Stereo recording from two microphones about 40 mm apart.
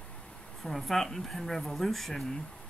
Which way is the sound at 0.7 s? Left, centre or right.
Centre.